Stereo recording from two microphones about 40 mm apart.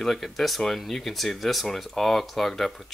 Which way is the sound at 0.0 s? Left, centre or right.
Centre.